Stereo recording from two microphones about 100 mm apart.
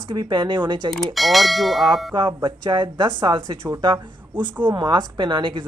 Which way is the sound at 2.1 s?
50° right (ahead or behind).